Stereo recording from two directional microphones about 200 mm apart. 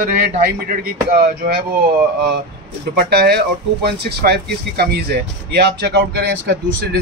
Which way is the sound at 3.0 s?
50° right (ahead or behind).